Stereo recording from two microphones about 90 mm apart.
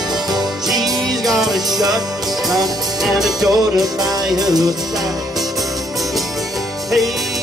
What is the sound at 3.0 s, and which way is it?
Music, 5° right (ahead or behind).